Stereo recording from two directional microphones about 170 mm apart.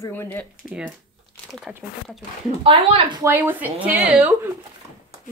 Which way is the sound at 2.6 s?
30° right (ahead or behind).